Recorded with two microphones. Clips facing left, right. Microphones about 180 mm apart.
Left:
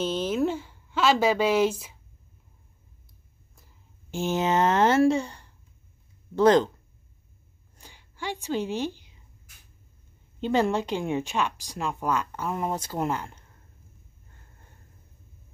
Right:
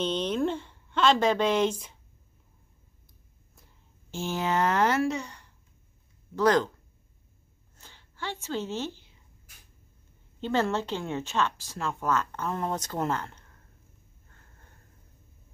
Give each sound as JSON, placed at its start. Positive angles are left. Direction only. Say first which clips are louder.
{"t": 0.0, "sound": "a woman's voice", "louder": "left 2 dB", "side_deg": 5}
{"t": 4.1, "sound": "a child's voice", "louder": "left 4 dB", "side_deg": 20}
{"t": 7.7, "sound": "a sound", "louder": "left 3 dB", "side_deg": 10}
{"t": 10.4, "sound": "speech", "louder": "left 3 dB", "side_deg": 15}